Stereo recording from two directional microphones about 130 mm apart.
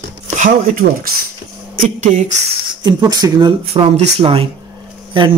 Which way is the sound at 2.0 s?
60° right (ahead or behind).